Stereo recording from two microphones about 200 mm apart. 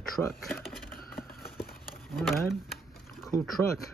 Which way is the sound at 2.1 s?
Centre (ahead or behind).